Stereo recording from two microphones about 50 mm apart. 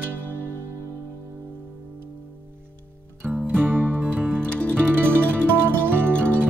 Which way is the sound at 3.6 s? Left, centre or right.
Right.